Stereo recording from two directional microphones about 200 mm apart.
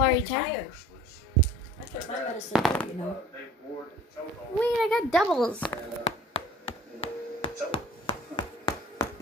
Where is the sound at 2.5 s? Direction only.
5° left (ahead or behind).